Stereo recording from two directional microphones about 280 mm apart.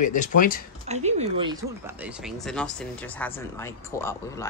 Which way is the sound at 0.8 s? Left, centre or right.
Right.